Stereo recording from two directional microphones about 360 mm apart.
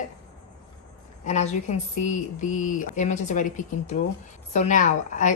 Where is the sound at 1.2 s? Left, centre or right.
Centre.